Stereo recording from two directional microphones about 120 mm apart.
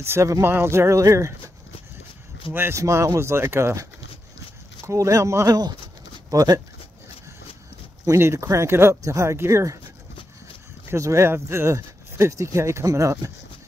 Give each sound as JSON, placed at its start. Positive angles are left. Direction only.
{"t": 0.0, "sound": "speech", "side_deg": -20}
{"t": 2.5, "sound": "speech", "side_deg": -20}
{"t": 4.8, "sound": "speech", "side_deg": -25}
{"t": 8.0, "sound": "speech", "side_deg": -25}
{"t": 10.9, "sound": "speech", "side_deg": -25}